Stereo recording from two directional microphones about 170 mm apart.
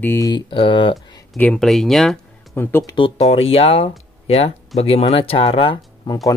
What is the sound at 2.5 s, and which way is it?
Speech, 15° left (ahead or behind).